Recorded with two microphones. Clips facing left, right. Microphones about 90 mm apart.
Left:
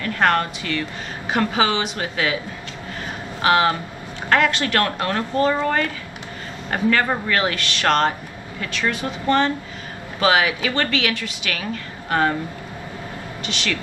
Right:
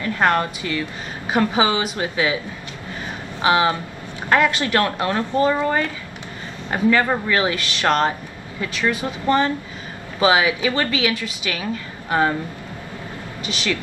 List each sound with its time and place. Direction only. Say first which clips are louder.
0.0 s a woman's voice: even; 20° right (ahead or behind)
3.4 s a woman's voice: even; 20° right (ahead or behind)